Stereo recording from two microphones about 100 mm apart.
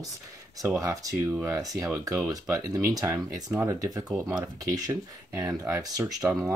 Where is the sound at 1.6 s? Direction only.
35° right (ahead or behind).